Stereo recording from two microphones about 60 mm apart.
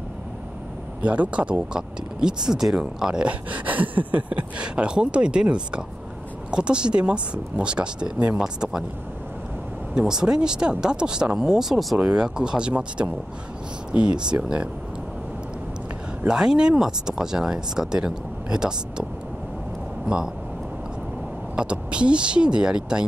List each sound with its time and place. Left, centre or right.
1.0 s speech: right; by 8.8 s centre
9.9 s speech: centre
16.3 s speech: centre
21.5 s speech: centre